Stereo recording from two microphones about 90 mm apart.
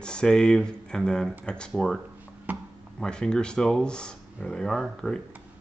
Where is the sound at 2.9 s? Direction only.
10° left (ahead or behind).